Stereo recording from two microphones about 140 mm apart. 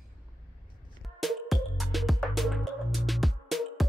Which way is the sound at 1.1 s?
Centre (ahead or behind).